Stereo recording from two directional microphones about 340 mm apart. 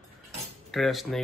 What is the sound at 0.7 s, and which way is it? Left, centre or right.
Speech, centre.